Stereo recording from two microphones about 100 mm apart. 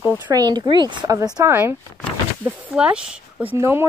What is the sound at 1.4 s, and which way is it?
Speech, 25° right (ahead or behind).